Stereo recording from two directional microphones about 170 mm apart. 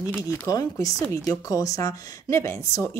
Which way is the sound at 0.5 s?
20° left (ahead or behind).